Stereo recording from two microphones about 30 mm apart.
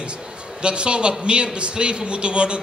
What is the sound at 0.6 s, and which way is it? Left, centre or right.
A man's voice, right.